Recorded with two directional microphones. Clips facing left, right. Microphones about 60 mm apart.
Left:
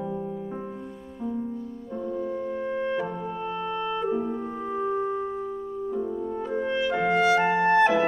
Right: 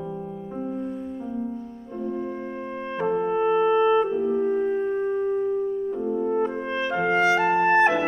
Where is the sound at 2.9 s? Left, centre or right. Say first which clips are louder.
Right 5 dB; right.